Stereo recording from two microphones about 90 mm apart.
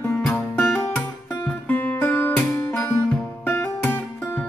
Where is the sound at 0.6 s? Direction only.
20° left (ahead or behind).